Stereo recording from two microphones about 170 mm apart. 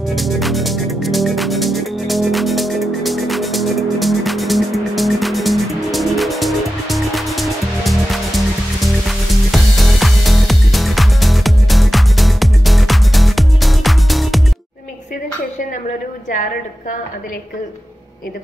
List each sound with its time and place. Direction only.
0.1 s music: centre (ahead or behind)